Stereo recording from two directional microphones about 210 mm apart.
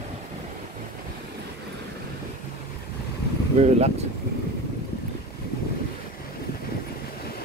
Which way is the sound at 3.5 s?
30° right (ahead or behind).